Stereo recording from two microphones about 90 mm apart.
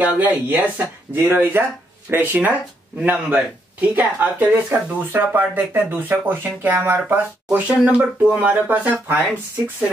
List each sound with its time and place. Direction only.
0.0 s speech: 15° right (ahead or behind)